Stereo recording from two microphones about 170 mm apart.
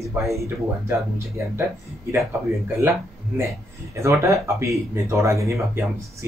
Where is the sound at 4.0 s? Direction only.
15° right (ahead or behind).